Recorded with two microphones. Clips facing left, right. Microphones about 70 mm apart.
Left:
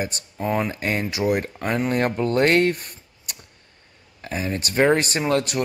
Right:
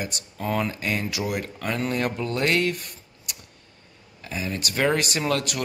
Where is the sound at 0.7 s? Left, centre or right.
Left.